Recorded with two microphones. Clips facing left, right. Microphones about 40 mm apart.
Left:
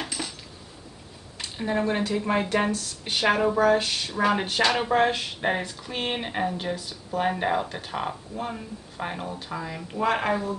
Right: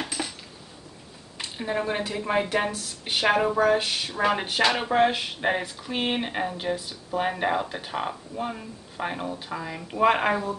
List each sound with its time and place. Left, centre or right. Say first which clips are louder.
0.0 s cutlery: right 1 dB; centre
1.4 s speech: left 2 dB; centre
9.9 s speech: right 3 dB; right